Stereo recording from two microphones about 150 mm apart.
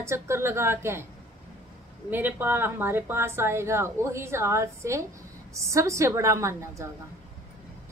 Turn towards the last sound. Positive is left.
turn(degrees=-20)  # may be behind; listen again after turning